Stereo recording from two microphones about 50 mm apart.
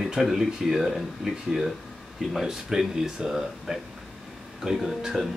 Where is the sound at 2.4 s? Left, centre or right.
Centre.